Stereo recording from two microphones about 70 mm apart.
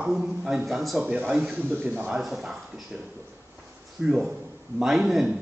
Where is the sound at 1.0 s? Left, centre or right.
Centre.